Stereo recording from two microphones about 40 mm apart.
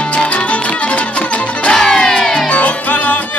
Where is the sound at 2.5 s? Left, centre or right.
Left.